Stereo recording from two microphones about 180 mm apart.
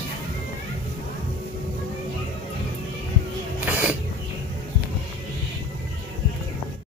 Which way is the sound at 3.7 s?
10° right (ahead or behind).